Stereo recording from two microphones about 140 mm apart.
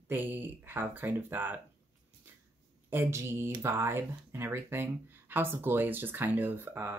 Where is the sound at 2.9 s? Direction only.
20° right (ahead or behind).